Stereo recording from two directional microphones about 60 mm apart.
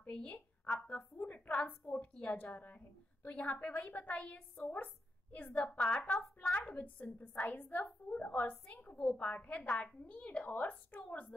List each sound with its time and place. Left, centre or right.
0.0 s a sound: left
1.1 s a woman's voice: left
4.8 s a sound: centre
5.7 s a woman's voice: left
6.1 s speech: centre
6.5 s a woman's voice: left